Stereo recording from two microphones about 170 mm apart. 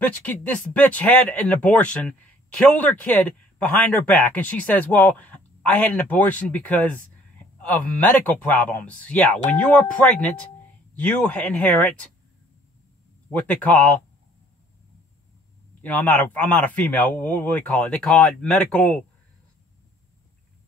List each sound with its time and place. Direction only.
0.0 s speech: 10° left (ahead or behind)
13.3 s speech: 10° left (ahead or behind)
15.8 s speech: 10° left (ahead or behind)